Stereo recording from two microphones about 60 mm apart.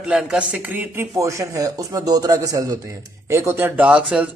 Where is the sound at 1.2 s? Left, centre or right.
Right.